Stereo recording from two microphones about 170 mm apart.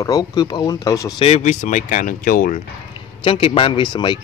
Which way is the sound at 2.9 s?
30° left (ahead or behind).